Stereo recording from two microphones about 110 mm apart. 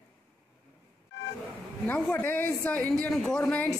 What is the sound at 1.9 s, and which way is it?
A woman's voice, 10° left (ahead or behind).